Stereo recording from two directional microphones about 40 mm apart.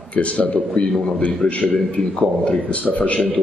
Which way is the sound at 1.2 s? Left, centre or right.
Left.